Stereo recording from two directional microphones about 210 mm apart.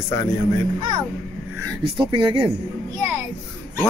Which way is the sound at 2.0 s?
25° right (ahead or behind).